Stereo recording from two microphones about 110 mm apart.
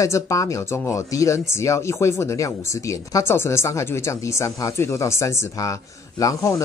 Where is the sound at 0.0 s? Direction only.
30° left (ahead or behind).